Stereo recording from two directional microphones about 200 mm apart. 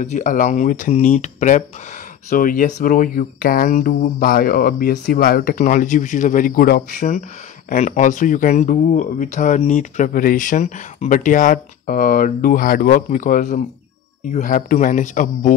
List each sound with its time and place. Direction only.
0.0 s speech: 40° left (ahead or behind)